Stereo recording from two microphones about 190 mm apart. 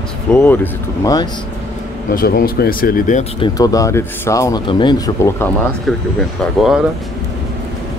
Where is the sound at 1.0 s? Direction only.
20° left (ahead or behind).